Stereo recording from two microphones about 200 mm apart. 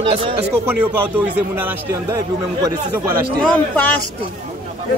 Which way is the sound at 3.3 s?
10° left (ahead or behind).